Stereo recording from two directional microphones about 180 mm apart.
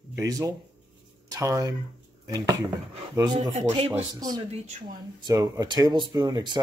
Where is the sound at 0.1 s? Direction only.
20° right (ahead or behind).